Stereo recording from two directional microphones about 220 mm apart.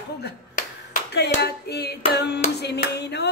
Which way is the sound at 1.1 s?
45° left (ahead or behind).